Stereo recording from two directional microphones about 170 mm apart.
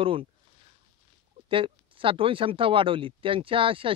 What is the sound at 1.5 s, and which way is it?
Speech, 30° right (ahead or behind).